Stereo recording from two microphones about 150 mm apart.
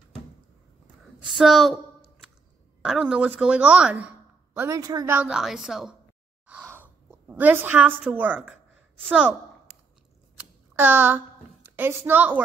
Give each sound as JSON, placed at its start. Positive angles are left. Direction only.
{"t": 1.4, "sound": "a sound", "side_deg": -5}
{"t": 2.8, "sound": "a woman's voice", "side_deg": -5}
{"t": 4.6, "sound": "a woman's voice", "side_deg": -20}
{"t": 5.1, "sound": "a woman's voice", "side_deg": -5}
{"t": 6.4, "sound": "a sound", "side_deg": -10}
{"t": 10.8, "sound": "a woman's voice", "side_deg": -10}